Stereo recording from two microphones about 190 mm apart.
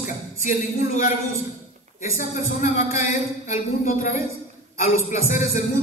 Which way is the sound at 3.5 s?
40° left (ahead or behind).